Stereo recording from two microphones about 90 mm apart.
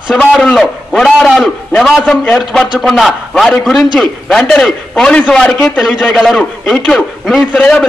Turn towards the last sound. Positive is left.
turn(degrees=15)  # may be behind; listen again after turning